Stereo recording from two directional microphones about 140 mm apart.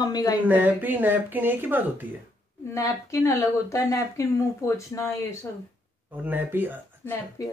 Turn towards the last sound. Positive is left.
turn(degrees=25)  # may be behind; listen again after turning